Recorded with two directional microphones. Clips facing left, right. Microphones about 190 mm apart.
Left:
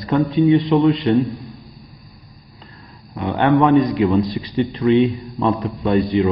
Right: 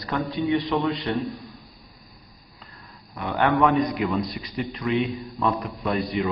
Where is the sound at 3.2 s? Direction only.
20° left (ahead or behind).